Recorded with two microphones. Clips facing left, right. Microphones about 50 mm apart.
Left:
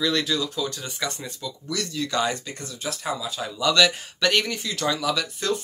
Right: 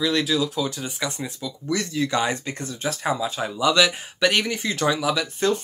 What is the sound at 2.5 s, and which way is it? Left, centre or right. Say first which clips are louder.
Speech: right 4 dB; right.